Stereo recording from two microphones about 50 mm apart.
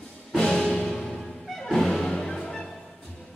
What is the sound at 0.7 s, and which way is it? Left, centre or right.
Music, centre.